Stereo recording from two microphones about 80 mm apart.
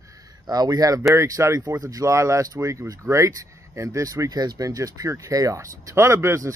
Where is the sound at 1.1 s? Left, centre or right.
Right.